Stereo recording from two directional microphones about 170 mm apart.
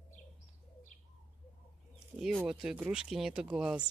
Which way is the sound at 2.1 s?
5° right (ahead or behind).